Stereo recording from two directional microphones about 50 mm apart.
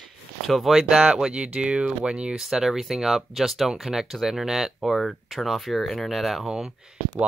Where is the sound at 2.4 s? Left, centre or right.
Centre.